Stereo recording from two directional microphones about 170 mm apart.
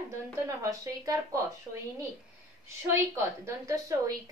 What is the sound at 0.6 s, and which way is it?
Speech, 20° right (ahead or behind).